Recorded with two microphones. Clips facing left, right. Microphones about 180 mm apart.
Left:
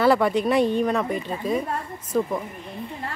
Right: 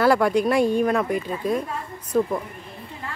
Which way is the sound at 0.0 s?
Centre (ahead or behind).